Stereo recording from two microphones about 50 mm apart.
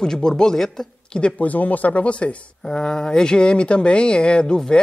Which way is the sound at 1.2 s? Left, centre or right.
Left.